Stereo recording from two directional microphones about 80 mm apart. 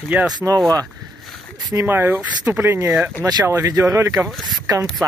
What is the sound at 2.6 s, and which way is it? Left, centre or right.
Speech, right.